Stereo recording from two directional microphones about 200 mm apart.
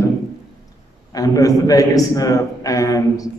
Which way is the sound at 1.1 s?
15° left (ahead or behind).